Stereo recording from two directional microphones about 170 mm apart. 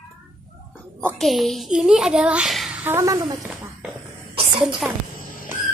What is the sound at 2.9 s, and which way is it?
Speech, 20° right (ahead or behind).